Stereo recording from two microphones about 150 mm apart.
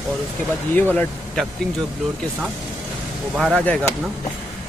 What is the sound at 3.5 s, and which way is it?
Speech, 10° left (ahead or behind).